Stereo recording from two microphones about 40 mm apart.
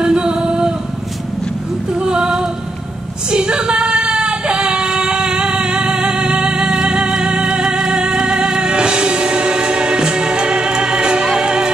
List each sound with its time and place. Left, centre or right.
0.0 s singing: right
1.9 s female singing: right
3.3 s child singing: right